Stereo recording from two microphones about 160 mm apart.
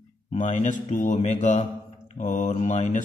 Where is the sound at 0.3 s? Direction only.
45° left (ahead or behind).